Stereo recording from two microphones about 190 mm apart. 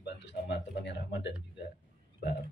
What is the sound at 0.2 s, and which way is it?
Speech, 65° left (ahead or behind).